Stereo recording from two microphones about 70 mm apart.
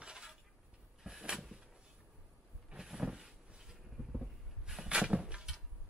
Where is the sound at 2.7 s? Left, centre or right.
Centre.